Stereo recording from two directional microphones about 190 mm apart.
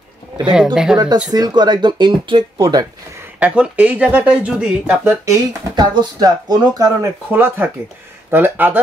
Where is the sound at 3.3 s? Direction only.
5° right (ahead or behind).